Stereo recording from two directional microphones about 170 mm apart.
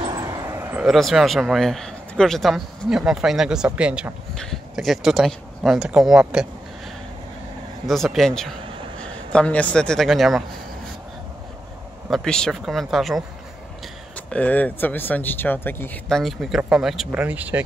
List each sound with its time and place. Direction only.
0.0 s a sound: 25° right (ahead or behind)
0.9 s speech: centre (ahead or behind)
7.8 s speech: centre (ahead or behind)
12.1 s speech: centre (ahead or behind)